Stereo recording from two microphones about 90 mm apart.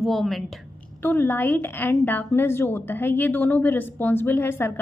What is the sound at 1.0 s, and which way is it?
A woman's voice, 20° left (ahead or behind).